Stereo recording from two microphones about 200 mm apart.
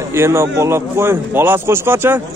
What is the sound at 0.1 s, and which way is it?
Speech, 15° right (ahead or behind).